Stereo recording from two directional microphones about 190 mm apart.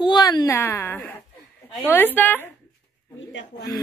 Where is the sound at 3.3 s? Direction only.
70° left (ahead or behind).